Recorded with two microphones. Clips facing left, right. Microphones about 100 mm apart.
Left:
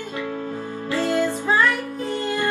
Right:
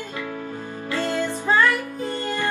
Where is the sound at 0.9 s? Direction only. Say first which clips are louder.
Left 3 dB; 15° left (ahead or behind).